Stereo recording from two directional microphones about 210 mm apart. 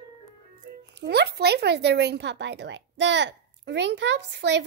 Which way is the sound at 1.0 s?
50° right (ahead or behind).